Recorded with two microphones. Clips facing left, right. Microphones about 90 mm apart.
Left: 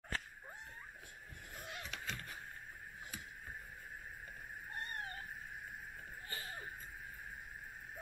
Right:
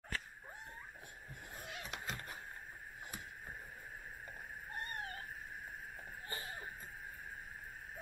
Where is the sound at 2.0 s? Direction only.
35° right (ahead or behind).